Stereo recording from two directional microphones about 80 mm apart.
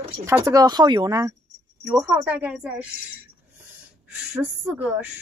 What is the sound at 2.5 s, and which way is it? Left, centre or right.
Speech, centre.